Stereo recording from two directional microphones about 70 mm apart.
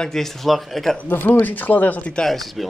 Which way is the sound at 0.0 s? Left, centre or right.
Centre.